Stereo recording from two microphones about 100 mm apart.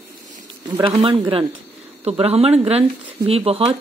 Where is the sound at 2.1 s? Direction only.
85° right.